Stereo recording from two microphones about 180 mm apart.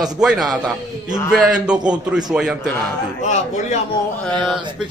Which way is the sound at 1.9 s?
5° right (ahead or behind).